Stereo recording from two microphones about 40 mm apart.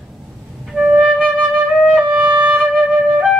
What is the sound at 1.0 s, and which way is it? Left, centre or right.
Flute, centre.